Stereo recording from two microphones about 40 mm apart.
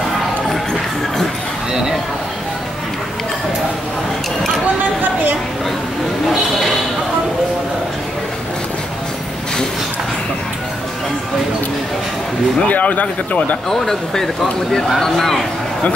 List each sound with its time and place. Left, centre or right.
12.6 s speech: left
13.7 s speech: centre